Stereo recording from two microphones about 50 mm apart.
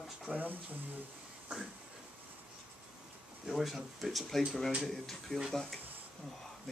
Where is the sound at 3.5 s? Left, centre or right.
Centre.